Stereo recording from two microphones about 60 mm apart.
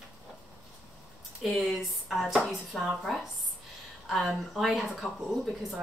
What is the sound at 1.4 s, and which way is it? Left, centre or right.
Speech, centre.